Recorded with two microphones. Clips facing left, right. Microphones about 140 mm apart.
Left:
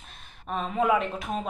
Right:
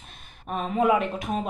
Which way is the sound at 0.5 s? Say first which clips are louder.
Right 2 dB; 45° right (ahead or behind).